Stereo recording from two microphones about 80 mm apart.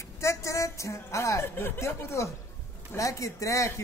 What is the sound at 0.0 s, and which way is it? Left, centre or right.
Speech, left.